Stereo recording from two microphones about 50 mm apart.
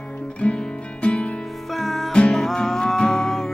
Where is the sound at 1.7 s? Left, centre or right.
Centre.